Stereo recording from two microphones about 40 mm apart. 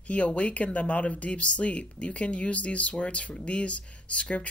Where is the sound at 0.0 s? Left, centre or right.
Left.